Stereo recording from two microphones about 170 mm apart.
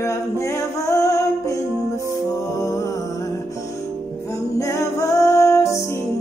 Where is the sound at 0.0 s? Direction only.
20° left (ahead or behind).